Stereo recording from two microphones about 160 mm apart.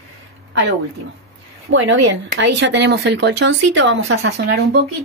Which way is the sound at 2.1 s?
90° right.